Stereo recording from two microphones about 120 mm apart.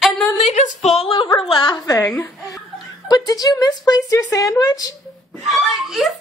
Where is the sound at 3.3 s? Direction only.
30° left (ahead or behind).